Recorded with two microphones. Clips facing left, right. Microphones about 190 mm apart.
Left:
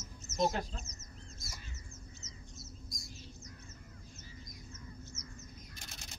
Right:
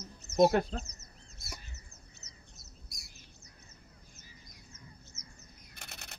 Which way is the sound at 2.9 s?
70° right (ahead or behind).